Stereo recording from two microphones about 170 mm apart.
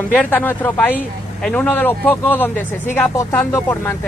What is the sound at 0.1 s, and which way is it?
Speech, 10° left (ahead or behind).